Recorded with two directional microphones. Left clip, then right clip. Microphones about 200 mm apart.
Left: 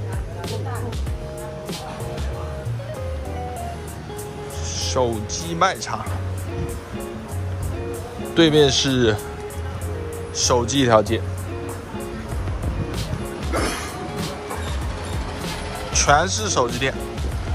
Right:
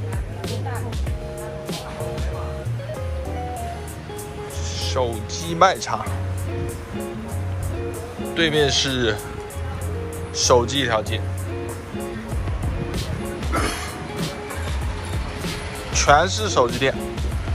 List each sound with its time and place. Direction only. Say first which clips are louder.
4.7 s music: left 2 dB; 20° left (ahead or behind)
5.3 s speech: right 3 dB; 10° left (ahead or behind)
8.4 s speech: left 3 dB; 20° left (ahead or behind)
10.3 s speech: right 2 dB; 5° left (ahead or behind)
10.9 s speech: left 6 dB; 30° left (ahead or behind)
15.9 s speech: right 1 dB; 10° left (ahead or behind)